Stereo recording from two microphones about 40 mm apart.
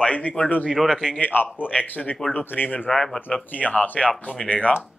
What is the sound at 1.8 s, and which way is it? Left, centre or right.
Speech, left.